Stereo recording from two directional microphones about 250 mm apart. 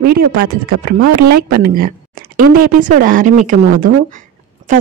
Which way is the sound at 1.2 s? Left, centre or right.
Right.